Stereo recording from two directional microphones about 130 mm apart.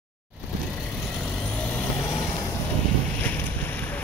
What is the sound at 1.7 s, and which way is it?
Vehicle, 20° left (ahead or behind).